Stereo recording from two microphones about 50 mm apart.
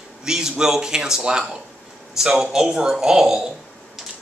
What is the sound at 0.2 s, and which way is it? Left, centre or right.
Speech, centre.